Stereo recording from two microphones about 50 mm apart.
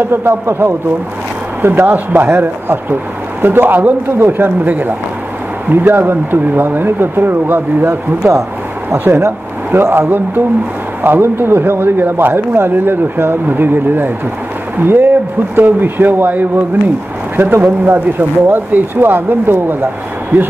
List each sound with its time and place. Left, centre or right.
0.0 s speech: right
1.8 s a man's voice: right